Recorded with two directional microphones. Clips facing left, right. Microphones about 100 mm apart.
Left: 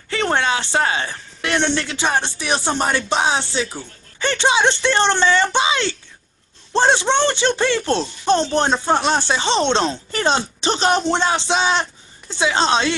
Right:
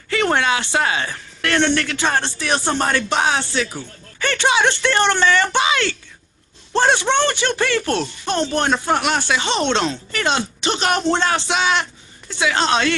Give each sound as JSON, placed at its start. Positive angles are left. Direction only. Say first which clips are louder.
{"t": 0.1, "sound": "speech", "louder": "right 1 dB", "side_deg": 30}